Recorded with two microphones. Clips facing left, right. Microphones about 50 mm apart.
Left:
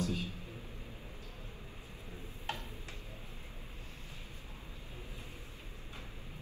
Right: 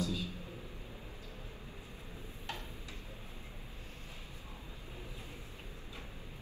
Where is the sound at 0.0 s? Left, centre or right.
Left.